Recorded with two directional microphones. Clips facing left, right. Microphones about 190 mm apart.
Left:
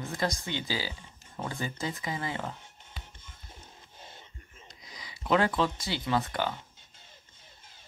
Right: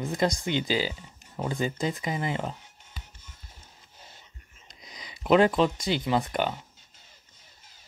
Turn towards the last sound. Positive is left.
turn(degrees=-20)  # may be behind; listen again after turning